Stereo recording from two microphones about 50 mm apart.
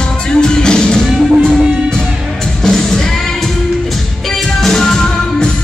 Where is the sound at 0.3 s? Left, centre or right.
Centre.